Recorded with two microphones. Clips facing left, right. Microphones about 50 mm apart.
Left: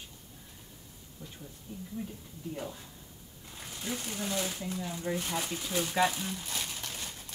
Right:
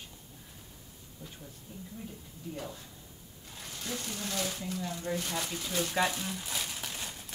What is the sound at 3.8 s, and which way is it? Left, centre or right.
Speech, centre.